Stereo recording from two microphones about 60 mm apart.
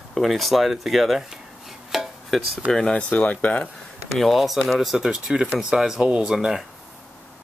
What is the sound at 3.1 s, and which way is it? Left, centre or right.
Speech, left.